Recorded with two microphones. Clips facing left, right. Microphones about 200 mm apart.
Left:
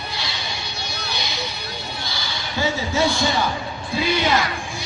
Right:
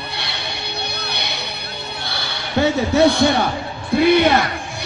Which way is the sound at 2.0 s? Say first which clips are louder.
Right 2 dB; 60° right (ahead or behind).